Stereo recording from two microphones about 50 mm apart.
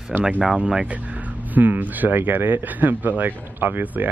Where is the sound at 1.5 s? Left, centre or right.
Right.